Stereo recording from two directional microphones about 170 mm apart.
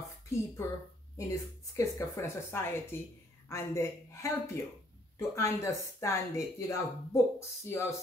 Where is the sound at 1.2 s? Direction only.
15° left (ahead or behind).